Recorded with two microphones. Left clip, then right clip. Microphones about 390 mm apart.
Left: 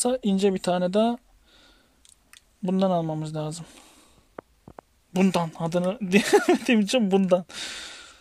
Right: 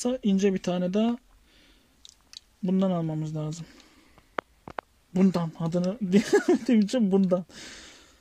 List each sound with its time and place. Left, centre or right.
0.0 s speech: left
2.6 s speech: left
4.4 s a sound: right
5.1 s speech: left